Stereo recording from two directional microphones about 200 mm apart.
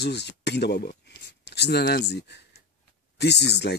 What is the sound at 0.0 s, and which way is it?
Speech, 55° left (ahead or behind).